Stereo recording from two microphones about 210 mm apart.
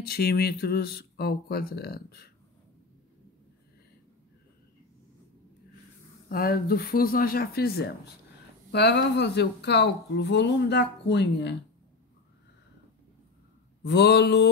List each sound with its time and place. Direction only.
0.0 s speech: 50° left (ahead or behind)
6.2 s speech: 45° left (ahead or behind)
13.8 s speech: 55° left (ahead or behind)